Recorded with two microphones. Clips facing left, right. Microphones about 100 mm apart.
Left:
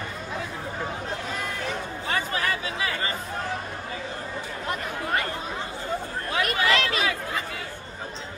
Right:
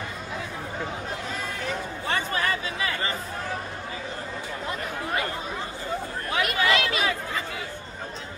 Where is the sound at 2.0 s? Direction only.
30° right (ahead or behind).